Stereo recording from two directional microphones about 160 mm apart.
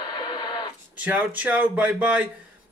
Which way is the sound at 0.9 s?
10° right (ahead or behind).